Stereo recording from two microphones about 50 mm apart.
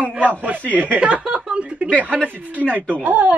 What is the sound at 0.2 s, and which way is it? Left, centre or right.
Speech, right.